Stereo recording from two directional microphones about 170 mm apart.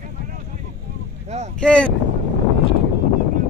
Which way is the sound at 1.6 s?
5° left (ahead or behind).